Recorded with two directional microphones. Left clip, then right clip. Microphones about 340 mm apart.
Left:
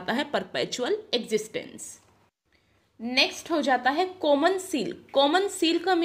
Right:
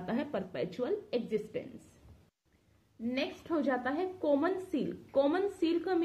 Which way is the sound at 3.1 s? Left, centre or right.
Left.